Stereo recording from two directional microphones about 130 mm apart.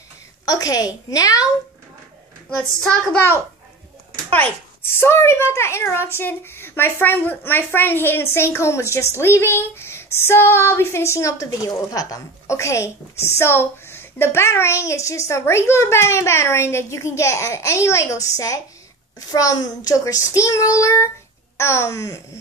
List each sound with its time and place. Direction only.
0.5 s a child's voice: 30° left (ahead or behind)
2.8 s a child's voice: 5° left (ahead or behind)
5.0 s a child's voice: 20° left (ahead or behind)